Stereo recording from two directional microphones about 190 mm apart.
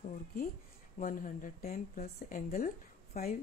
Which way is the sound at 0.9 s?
45° left (ahead or behind).